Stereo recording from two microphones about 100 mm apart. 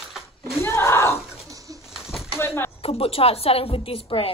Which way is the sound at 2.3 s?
25° left (ahead or behind).